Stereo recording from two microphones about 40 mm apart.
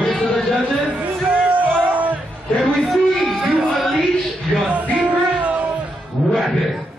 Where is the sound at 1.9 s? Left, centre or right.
Right.